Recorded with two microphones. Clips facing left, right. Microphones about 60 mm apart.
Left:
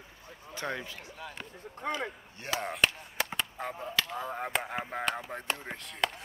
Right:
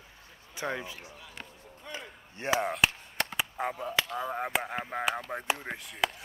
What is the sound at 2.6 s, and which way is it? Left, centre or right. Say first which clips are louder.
Speech: left 3 dB; centre.